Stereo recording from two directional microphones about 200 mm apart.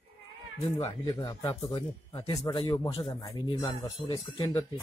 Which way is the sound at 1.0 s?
20° left (ahead or behind).